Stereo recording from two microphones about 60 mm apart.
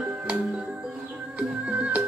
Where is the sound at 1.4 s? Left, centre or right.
Right.